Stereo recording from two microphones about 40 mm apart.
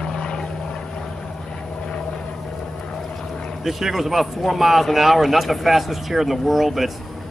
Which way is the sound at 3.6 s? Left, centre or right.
Centre.